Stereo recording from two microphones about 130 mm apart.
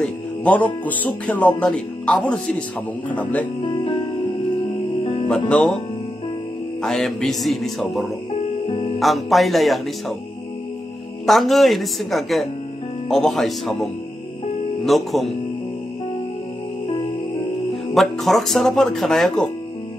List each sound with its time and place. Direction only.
0.0 s speech: 10° left (ahead or behind)
3.6 s music: 40° left (ahead or behind)
5.5 s speech: 5° left (ahead or behind)
6.8 s speech: 5° left (ahead or behind)
11.2 s speech: centre (ahead or behind)
14.9 s speech: centre (ahead or behind)
17.9 s speech: centre (ahead or behind)